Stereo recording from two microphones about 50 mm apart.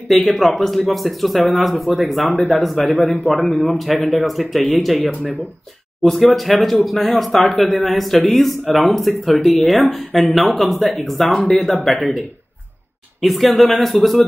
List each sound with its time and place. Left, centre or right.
0.1 s speech: centre
2.9 s a man's voice: left
3.3 s speech: centre
6.0 s speech: centre
13.2 s speech: centre